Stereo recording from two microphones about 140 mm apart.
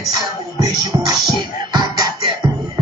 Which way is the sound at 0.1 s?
30° right (ahead or behind).